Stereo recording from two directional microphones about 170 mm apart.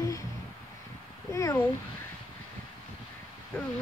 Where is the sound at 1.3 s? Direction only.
15° left (ahead or behind).